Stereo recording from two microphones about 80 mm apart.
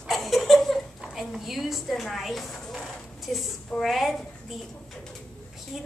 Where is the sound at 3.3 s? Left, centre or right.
Centre.